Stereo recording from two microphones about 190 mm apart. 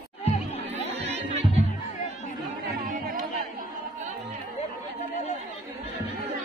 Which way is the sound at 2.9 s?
45° right (ahead or behind).